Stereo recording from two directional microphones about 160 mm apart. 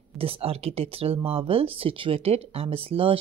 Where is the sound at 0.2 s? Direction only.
40° right (ahead or behind).